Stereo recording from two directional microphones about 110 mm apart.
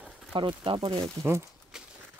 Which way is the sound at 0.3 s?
50° right (ahead or behind).